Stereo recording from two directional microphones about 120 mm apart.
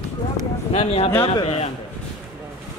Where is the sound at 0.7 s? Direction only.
55° left (ahead or behind).